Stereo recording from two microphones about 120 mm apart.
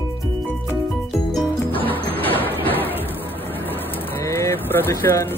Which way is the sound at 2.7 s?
15° left (ahead or behind).